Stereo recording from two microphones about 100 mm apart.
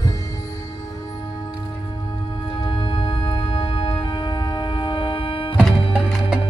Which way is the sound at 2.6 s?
60° left (ahead or behind).